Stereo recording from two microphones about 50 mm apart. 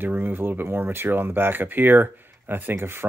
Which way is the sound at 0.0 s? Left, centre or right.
Right.